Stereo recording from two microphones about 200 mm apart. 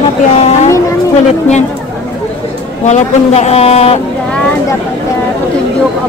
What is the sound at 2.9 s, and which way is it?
Speech, 35° left (ahead or behind).